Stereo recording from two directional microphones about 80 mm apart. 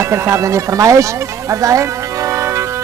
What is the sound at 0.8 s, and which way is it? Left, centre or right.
Speech, right.